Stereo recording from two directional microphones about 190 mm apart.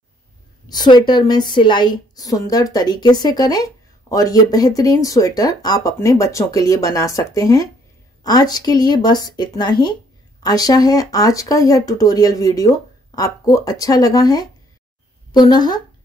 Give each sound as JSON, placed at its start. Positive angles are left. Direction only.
{"t": 0.7, "sound": "speech", "side_deg": 20}